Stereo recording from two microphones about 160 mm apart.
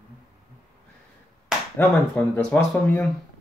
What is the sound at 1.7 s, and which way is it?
Speech, 10° left (ahead or behind).